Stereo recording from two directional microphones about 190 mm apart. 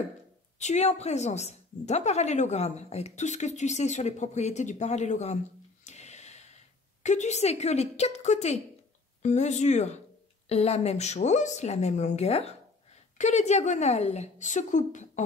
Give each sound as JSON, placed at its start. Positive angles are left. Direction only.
{"t": 0.6, "sound": "a woman's voice", "side_deg": 35}
{"t": 5.9, "sound": "a sound", "side_deg": 35}
{"t": 9.2, "sound": "a woman's voice", "side_deg": 40}